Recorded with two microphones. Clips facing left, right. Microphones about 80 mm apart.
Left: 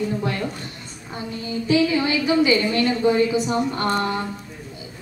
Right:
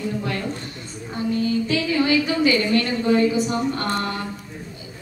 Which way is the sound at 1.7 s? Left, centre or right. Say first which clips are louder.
Left 5 dB; left.